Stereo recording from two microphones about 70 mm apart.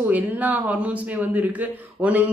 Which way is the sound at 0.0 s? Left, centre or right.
Right.